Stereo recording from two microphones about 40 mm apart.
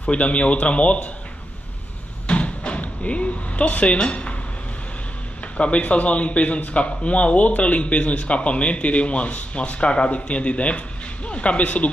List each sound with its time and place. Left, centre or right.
0.0 s a man's voice: left
2.2 s a sound: left
5.4 s a man's voice: left